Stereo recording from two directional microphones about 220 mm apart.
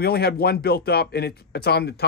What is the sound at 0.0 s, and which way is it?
Speech, 45° left (ahead or behind).